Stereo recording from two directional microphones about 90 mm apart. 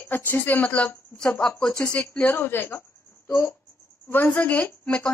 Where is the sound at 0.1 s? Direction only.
20° left (ahead or behind).